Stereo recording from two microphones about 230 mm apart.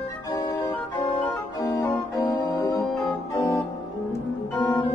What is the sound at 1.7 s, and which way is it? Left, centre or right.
Organ, centre.